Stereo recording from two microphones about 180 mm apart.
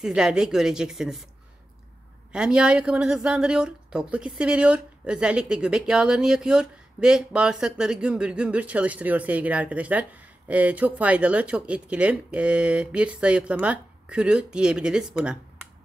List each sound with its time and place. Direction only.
0.0 s a woman's voice: 5° right (ahead or behind)
2.3 s a woman's voice: 5° right (ahead or behind)